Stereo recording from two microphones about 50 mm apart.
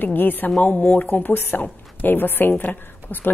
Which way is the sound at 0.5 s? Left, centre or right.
Left.